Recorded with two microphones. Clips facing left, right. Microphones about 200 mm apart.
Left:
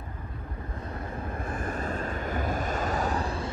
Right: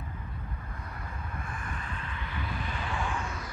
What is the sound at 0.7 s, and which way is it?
Vehicle, 30° left (ahead or behind).